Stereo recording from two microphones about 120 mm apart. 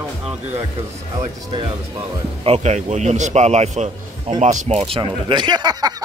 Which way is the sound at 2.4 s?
65° right (ahead or behind).